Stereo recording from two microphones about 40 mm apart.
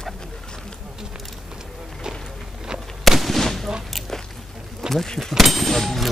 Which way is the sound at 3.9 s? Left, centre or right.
Centre.